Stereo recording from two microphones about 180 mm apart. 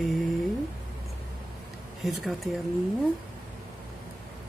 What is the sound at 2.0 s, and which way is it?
Speech, centre (ahead or behind).